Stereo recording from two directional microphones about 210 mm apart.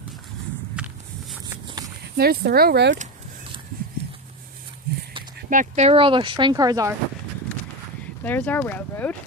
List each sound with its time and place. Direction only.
0.8 s walk: 5° right (ahead or behind)
2.1 s speech: 45° right (ahead or behind)
5.5 s speech: 35° right (ahead or behind); by 6.9 s 15° right (ahead or behind)
8.2 s speech: 10° left (ahead or behind)